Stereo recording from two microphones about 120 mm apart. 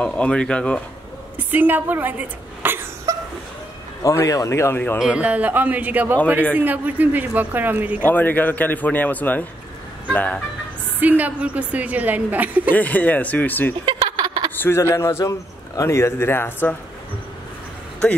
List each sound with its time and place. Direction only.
0.0 s speech: 10° left (ahead or behind)
1.3 s speech: 15° right (ahead or behind)
4.0 s a man's voice: 25° left (ahead or behind)
5.0 s a woman's voice: 10° right (ahead or behind)
8.0 s speech: 15° left (ahead or behind)
11.0 s a woman's voice: 15° right (ahead or behind)
12.7 s speech: 15° left (ahead or behind)
13.8 s a sound: 40° right (ahead or behind)
14.6 s a man's voice: 20° left (ahead or behind)